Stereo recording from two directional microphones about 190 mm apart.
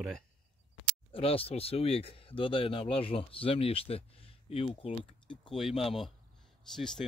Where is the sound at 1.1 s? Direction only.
30° left (ahead or behind).